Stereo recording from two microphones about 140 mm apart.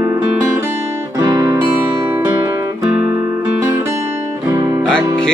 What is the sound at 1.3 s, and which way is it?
Music, 25° right (ahead or behind).